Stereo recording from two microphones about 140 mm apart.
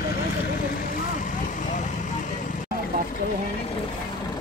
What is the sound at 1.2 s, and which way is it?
Vehicle, 65° left (ahead or behind).